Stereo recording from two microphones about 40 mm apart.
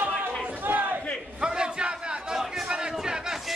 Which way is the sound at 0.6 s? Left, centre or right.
Right.